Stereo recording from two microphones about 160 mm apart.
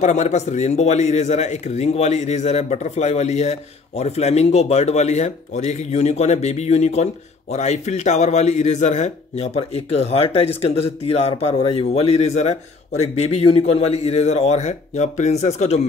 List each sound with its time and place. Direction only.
0.0 s a man's voice: 45° left (ahead or behind)